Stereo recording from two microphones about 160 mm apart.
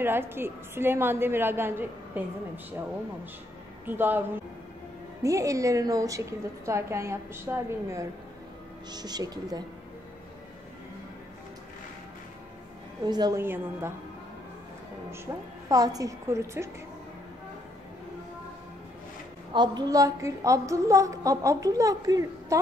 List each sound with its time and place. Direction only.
0.0 s a woman's voice: 15° right (ahead or behind)
3.8 s a woman's voice: 15° right (ahead or behind)
5.2 s a woman's voice: 20° right (ahead or behind)
13.0 s a woman's voice: 25° right (ahead or behind)
13.4 s a woman's voice: 15° right (ahead or behind)
15.7 s a woman's voice: 20° right (ahead or behind)
19.5 s a woman's voice: 25° right (ahead or behind)